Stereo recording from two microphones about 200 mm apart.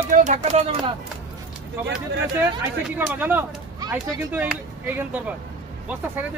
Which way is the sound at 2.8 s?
10° right (ahead or behind).